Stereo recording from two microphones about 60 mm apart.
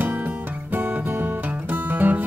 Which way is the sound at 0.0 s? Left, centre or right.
Right.